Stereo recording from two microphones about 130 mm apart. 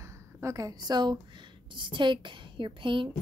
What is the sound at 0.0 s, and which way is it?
A woman's voice, 25° right (ahead or behind).